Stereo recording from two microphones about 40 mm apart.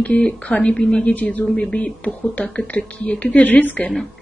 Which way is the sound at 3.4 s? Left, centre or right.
Left.